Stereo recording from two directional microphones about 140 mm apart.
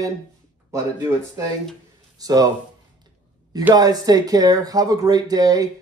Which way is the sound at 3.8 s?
25° right (ahead or behind).